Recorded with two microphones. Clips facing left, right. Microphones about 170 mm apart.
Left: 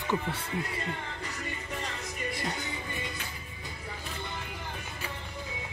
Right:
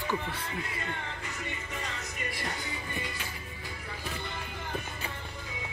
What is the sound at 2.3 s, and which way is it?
Music, 25° left (ahead or behind).